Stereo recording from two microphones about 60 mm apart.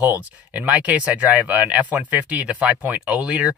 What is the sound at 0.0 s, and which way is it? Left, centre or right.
Speech, right.